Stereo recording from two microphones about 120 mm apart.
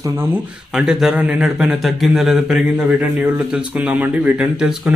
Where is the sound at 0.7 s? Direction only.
5° right (ahead or behind).